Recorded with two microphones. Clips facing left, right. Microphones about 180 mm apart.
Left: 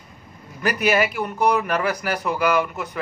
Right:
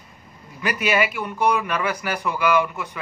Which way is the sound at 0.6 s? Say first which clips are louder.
Left 2 dB; 40° left (ahead or behind).